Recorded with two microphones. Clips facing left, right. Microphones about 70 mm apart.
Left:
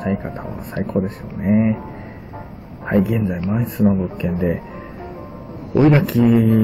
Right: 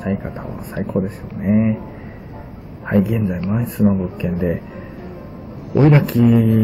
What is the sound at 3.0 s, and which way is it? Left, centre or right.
Speech, centre.